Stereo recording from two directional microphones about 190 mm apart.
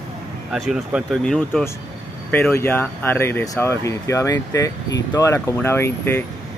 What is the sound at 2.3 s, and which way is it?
Speech, 10° left (ahead or behind).